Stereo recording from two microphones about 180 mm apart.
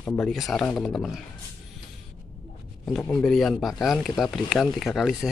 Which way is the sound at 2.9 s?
5° left (ahead or behind).